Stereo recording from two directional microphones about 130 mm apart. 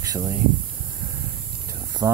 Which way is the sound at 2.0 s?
25° right (ahead or behind).